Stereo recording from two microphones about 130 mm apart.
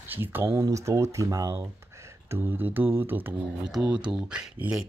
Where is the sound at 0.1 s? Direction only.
15° right (ahead or behind).